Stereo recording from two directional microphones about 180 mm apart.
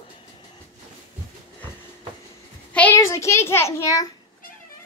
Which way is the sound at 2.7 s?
10° left (ahead or behind).